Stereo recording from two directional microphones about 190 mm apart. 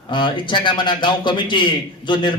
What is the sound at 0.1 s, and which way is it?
A man's voice, 25° left (ahead or behind).